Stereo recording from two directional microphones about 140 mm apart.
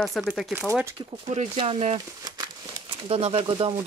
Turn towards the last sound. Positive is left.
turn(degrees=-40)  # may be behind; listen again after turning